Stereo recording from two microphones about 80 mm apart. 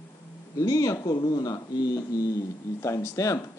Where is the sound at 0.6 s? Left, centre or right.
Left.